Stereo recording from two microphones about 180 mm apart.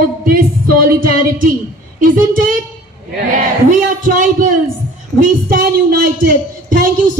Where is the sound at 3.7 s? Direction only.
45° right (ahead or behind).